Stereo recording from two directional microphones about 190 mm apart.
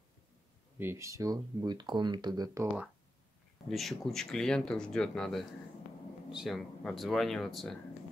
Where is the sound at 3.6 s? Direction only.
Centre (ahead or behind).